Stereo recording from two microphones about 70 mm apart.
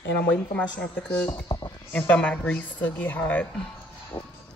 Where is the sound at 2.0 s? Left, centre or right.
Left.